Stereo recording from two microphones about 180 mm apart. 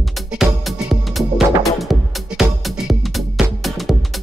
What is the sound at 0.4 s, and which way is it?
Music, centre (ahead or behind).